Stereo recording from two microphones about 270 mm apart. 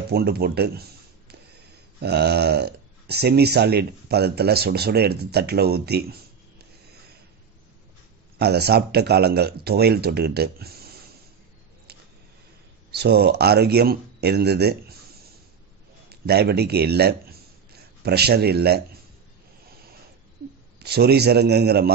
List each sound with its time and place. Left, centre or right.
0.1 s speech: right
2.0 s speech: right
8.4 s speech: right
12.9 s speech: right
16.1 s a man's voice: right
20.8 s speech: right